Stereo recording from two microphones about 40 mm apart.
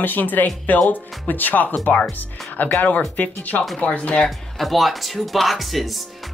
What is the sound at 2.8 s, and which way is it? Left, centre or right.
Speech, left.